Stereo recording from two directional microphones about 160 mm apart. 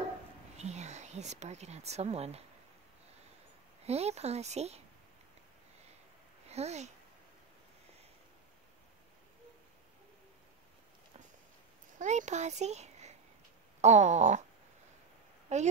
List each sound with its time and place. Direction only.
0.6 s speech: 45° right (ahead or behind)
3.8 s a woman's voice: 40° right (ahead or behind)
6.4 s speech: 40° right (ahead or behind)
12.0 s a child's voice: 50° right (ahead or behind)
13.7 s a sound: 45° right (ahead or behind)
15.5 s a sound: 45° right (ahead or behind)